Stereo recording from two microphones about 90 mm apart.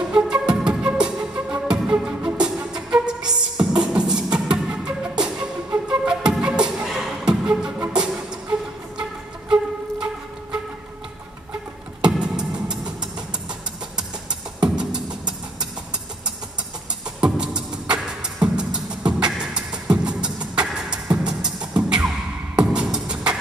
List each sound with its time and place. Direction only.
0.1 s music: 10° right (ahead or behind)
5.7 s beatboxing: 10° right (ahead or behind)
7.9 s music: 10° right (ahead or behind)
12.0 s music: 10° right (ahead or behind)
14.6 s music: 10° right (ahead or behind)
17.2 s music: 10° right (ahead or behind)